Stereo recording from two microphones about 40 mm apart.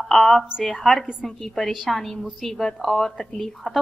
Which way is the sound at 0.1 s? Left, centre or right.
Centre.